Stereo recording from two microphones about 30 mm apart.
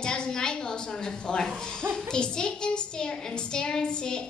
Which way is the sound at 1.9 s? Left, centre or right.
Left.